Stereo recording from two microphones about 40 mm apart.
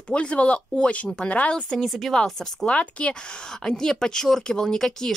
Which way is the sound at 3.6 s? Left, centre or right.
Centre.